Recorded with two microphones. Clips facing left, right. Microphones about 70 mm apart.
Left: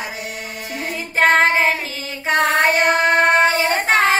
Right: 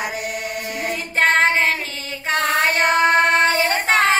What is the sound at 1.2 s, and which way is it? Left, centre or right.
Child singing, centre.